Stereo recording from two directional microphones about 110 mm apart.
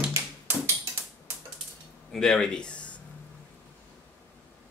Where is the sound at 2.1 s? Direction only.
5° left (ahead or behind).